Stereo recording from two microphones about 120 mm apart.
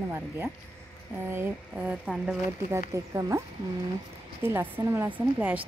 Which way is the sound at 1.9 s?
5° right (ahead or behind).